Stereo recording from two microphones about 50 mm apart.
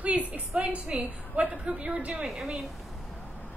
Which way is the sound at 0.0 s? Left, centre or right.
Right.